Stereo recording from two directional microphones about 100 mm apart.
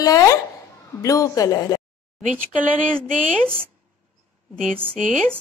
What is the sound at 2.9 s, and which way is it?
Speech, 10° left (ahead or behind).